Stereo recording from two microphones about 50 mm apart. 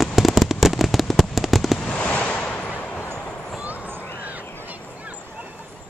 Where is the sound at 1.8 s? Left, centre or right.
Left.